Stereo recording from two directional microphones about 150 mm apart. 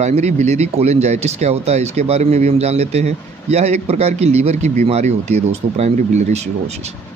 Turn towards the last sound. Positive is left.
turn(degrees=-45)  # may be behind; listen again after turning